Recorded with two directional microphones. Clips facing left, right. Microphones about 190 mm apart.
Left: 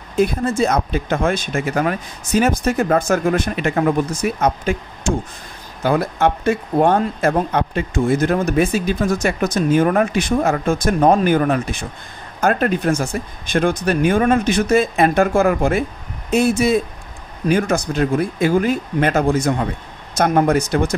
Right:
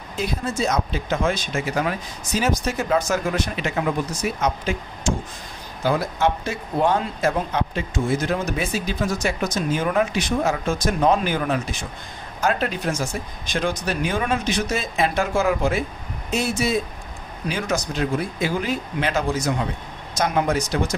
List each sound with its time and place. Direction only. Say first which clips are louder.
0.1 s speech: left 9 dB; 55° left (ahead or behind)